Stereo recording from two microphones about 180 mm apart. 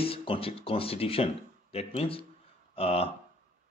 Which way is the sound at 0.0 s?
30° left (ahead or behind).